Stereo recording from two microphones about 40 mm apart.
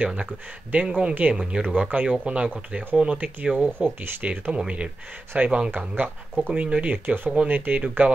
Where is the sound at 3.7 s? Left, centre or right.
Right.